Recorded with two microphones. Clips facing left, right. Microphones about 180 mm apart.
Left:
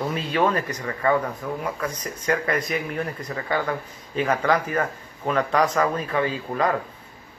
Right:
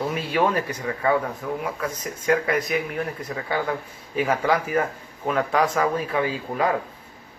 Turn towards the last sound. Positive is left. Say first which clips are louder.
# even
turn(degrees=-10)  # may be behind; listen again after turning